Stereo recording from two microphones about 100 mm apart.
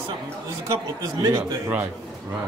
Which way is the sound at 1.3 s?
20° right (ahead or behind).